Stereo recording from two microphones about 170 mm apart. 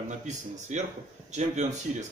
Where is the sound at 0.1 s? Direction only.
45° right (ahead or behind).